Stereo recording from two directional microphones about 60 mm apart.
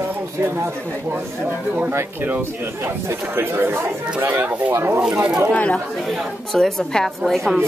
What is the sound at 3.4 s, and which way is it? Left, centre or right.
Speech, right.